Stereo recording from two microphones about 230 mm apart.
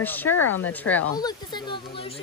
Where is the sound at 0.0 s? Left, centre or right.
Centre.